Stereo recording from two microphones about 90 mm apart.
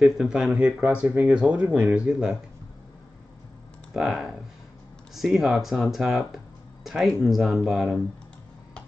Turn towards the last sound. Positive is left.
turn(degrees=-5)  # may be behind; listen again after turning